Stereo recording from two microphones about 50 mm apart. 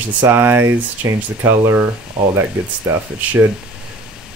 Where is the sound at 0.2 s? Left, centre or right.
Right.